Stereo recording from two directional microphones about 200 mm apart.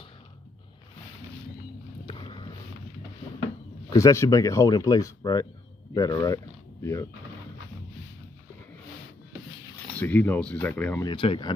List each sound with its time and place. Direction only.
2.0 s boat: 25° left (ahead or behind)
3.9 s speech: 15° left (ahead or behind)
9.9 s speech: 10° left (ahead or behind)
11.1 s speech: 25° left (ahead or behind)